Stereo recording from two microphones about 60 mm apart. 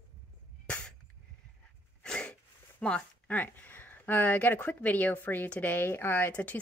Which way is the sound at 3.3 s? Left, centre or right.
Left.